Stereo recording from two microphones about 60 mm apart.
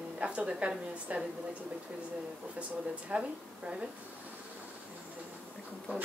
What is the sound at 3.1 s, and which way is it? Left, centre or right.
Speech, centre.